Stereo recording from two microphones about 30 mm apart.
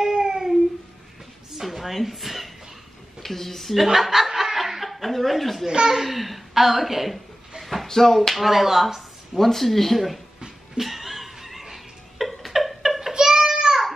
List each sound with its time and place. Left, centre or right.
0.0 s baby cry: centre
1.5 s a sound: centre
3.2 s speech: centre
3.7 s speech: centre
4.4 s snicker: centre
5.7 s a child's voice: right
6.0 s speech: centre
6.5 s a sound: centre
7.8 s speech: centre
8.4 s speech: centre
9.4 s speech: centre
10.8 s laughter: centre
13.1 s child singing: right